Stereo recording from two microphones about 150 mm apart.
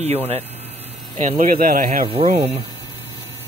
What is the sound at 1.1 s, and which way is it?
Speech, 55° right (ahead or behind).